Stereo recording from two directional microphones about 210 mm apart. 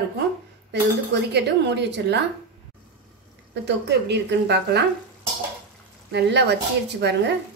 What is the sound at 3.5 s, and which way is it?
Speech, 55° right (ahead or behind).